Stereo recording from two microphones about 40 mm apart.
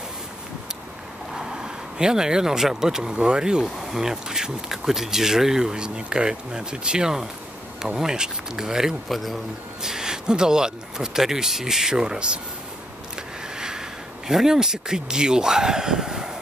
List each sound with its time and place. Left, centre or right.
1.3 s speech: centre
3.7 s speech: centre
9.1 s speech: centre
9.8 s speech: centre
13.6 s speech: centre